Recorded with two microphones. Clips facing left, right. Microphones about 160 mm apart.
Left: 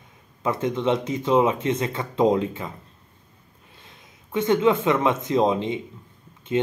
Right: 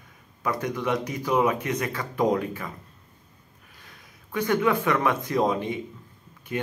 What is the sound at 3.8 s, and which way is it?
Speech, 25° left (ahead or behind).